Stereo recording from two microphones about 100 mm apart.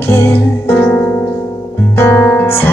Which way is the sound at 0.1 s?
25° left (ahead or behind).